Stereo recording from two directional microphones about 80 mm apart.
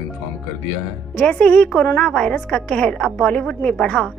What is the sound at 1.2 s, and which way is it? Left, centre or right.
A woman's voice, centre.